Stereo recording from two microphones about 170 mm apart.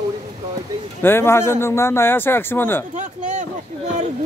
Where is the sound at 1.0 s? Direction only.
15° left (ahead or behind).